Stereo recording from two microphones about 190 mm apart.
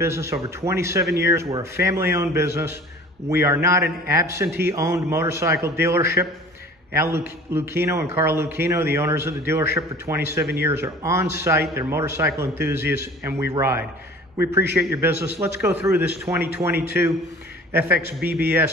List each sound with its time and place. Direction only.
0.0 s a man's voice: 15° right (ahead or behind)
18.2 s a man's voice: 55° right (ahead or behind)